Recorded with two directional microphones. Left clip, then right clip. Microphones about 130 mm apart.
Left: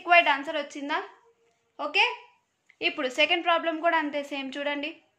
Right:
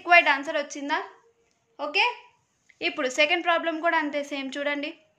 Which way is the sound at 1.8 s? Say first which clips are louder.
Even; 10° left (ahead or behind).